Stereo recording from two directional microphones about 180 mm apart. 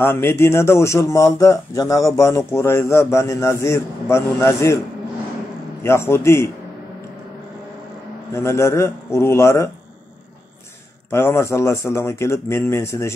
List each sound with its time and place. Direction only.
0.0 s speech: 15° left (ahead or behind)
5.8 s speech: 15° left (ahead or behind)
8.3 s speech: 15° left (ahead or behind)
11.1 s speech: 15° left (ahead or behind)